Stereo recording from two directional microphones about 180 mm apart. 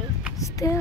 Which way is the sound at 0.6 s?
20° left (ahead or behind).